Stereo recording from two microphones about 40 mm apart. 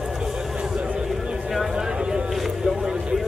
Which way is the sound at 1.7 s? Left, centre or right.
Centre.